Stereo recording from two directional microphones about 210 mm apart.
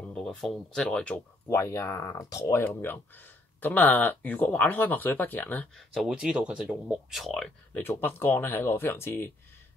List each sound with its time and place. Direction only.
0.0 s speech: 5° left (ahead or behind)